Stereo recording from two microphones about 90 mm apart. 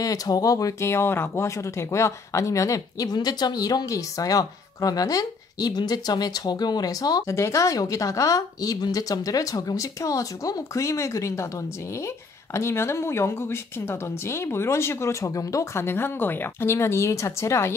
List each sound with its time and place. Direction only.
0.0 s speech: 45° left (ahead or behind)
12.5 s a woman's voice: 30° left (ahead or behind)